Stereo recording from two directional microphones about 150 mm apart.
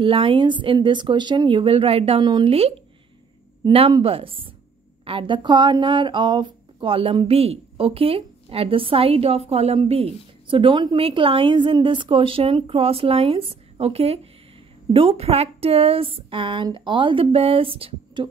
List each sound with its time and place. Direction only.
0.0 s a woman's voice: 35° right (ahead or behind)